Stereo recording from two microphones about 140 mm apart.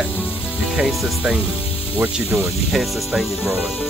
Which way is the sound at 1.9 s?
15° right (ahead or behind).